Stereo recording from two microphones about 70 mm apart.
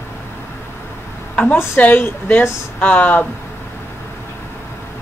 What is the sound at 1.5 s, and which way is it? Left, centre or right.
Speech, left.